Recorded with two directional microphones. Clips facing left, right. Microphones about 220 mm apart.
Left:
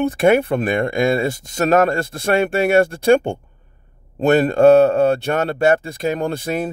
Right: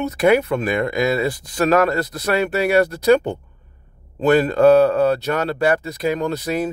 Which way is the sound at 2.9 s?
25° left (ahead or behind).